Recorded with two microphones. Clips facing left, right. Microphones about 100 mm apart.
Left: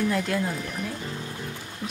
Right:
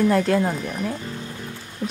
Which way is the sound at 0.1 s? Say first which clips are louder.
Right 7 dB; 45° right (ahead or behind).